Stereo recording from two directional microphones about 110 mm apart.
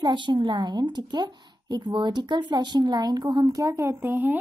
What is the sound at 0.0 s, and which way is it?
A woman's voice, 45° right (ahead or behind).